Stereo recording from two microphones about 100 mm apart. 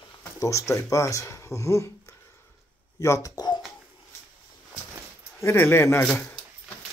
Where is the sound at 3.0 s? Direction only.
35° left (ahead or behind).